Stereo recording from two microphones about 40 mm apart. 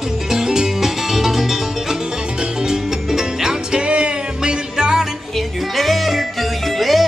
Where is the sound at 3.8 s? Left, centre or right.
Right.